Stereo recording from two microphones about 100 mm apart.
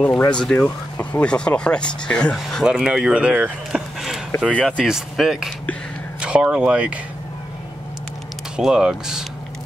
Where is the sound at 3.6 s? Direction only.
5° right (ahead or behind).